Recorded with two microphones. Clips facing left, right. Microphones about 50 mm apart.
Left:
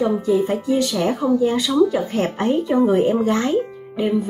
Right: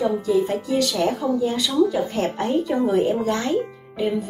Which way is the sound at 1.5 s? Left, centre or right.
Left.